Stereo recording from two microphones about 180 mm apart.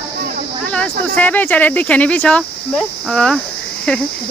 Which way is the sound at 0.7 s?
5° left (ahead or behind).